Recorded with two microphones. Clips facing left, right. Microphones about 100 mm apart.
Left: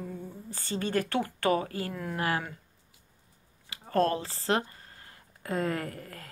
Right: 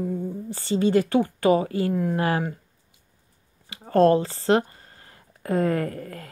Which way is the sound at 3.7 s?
30° right (ahead or behind).